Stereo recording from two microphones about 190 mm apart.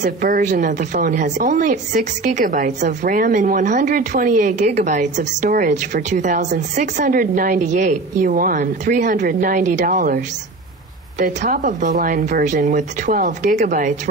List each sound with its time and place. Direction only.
0.0 s a woman's voice: 45° right (ahead or behind)